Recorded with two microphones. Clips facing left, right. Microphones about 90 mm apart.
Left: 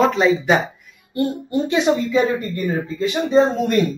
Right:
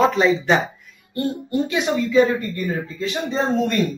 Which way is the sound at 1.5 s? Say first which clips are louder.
Left 3 dB; 25° left (ahead or behind).